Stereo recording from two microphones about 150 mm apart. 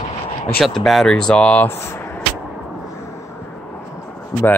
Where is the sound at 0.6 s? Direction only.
Centre (ahead or behind).